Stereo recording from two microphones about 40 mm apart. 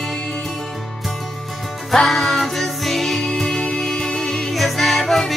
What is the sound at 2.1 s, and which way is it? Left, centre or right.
Music, centre.